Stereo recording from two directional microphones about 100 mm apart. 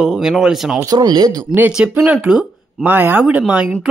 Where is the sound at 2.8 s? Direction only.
20° right (ahead or behind).